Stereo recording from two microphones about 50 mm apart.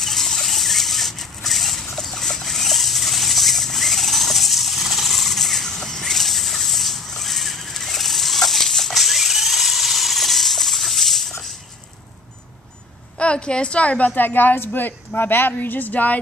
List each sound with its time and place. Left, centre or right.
0.0 s a sound: centre
2.0 s rodents: centre
13.2 s a woman's voice: left